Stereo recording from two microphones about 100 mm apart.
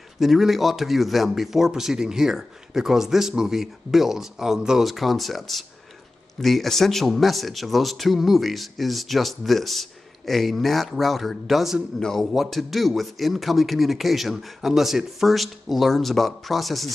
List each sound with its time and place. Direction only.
0.2 s speech: centre (ahead or behind)